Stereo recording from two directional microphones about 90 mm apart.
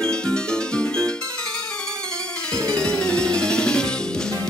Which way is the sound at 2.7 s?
10° left (ahead or behind).